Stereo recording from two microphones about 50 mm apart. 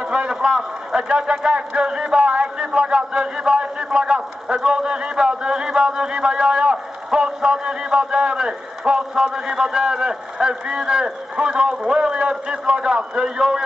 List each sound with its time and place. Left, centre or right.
0.1 s a man's voice: centre